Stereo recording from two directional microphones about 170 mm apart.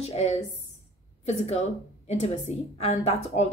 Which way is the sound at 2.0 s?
40° left (ahead or behind).